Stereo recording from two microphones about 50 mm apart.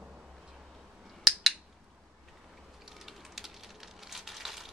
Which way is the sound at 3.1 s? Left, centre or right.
Centre.